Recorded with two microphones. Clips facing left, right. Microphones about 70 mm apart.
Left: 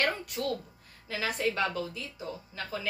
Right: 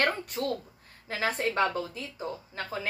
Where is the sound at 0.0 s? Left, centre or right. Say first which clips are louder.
Right 2 dB; right.